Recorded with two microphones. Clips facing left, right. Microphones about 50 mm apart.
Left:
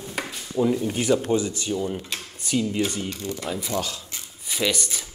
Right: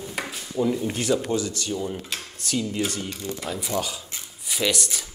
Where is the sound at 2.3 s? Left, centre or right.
Centre.